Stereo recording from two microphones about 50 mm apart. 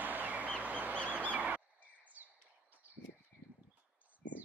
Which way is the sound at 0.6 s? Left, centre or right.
Right.